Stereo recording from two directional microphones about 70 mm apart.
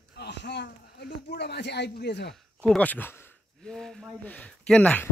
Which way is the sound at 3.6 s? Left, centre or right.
Centre.